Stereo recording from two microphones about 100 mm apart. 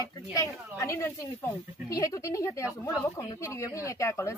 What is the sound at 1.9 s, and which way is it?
Speech, 35° left (ahead or behind).